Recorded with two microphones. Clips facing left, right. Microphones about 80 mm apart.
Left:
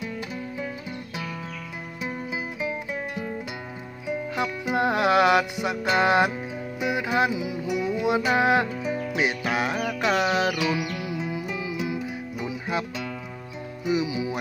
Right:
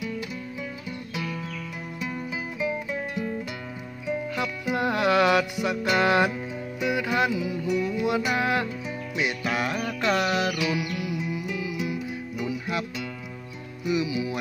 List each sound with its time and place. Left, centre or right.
2.0 s music: left
4.4 s music: left